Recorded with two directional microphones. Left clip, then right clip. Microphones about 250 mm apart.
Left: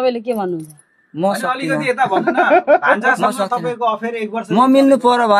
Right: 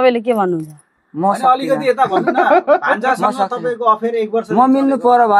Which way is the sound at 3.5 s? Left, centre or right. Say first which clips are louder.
Even; left.